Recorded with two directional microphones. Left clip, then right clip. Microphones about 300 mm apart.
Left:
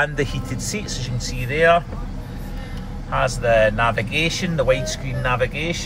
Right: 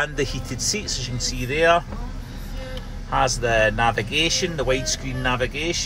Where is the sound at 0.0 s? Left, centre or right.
Centre.